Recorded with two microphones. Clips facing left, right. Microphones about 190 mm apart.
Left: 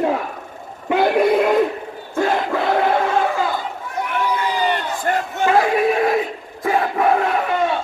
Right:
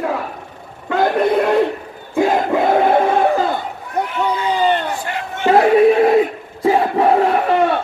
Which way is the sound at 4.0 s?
60° right (ahead or behind).